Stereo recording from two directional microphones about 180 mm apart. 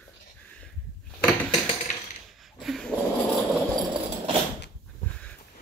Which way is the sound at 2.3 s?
Centre (ahead or behind).